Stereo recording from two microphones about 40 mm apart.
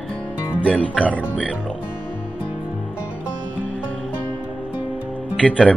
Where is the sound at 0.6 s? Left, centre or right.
Left.